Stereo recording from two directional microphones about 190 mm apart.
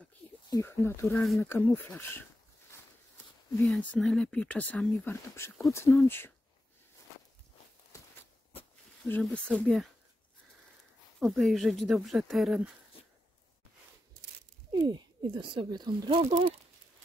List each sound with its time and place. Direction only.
0.5 s speech: 15° left (ahead or behind)
3.6 s speech: centre (ahead or behind)
9.0 s speech: 10° left (ahead or behind)
11.1 s speech: centre (ahead or behind)
14.7 s speech: 20° right (ahead or behind)